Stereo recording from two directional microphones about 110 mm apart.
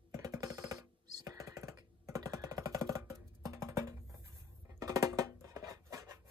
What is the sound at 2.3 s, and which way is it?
Music, 30° right (ahead or behind).